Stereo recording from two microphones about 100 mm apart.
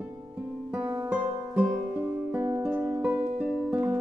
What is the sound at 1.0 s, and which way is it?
Music, 15° right (ahead or behind).